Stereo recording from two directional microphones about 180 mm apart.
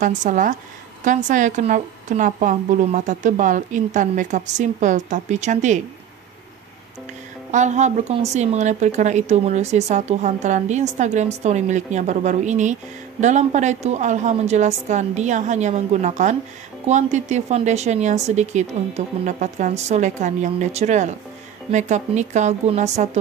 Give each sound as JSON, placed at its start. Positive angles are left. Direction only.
{"t": 0.0, "sound": "a woman's voice", "side_deg": -45}
{"t": 7.5, "sound": "a woman's voice", "side_deg": -40}